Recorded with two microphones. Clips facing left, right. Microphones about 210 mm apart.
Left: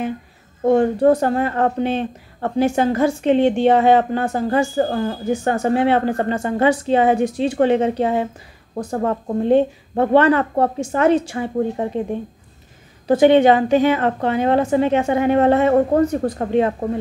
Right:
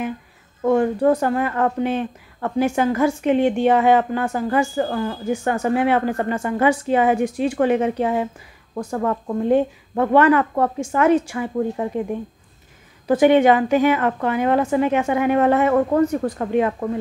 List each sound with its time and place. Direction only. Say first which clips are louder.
0.7 s a woman's voice: left 3 dB; 30° left (ahead or behind)
13.2 s speech: left 2 dB; 25° left (ahead or behind)